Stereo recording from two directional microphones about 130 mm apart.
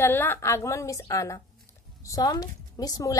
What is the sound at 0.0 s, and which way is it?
A woman's voice, 15° left (ahead or behind).